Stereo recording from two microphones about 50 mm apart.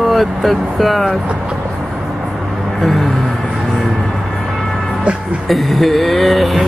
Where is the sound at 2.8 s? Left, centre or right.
Centre.